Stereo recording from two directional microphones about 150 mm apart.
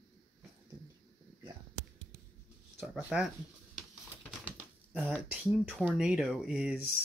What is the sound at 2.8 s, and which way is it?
Speech, 5° right (ahead or behind).